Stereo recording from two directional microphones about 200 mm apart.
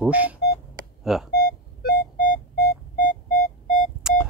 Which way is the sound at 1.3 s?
50° left (ahead or behind).